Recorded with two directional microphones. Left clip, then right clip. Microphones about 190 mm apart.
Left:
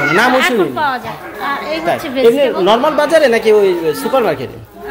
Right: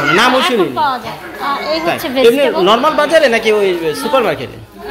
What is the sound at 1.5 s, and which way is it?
Speech, 10° right (ahead or behind).